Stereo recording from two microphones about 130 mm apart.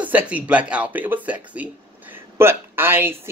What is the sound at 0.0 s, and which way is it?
Speech, 10° right (ahead or behind).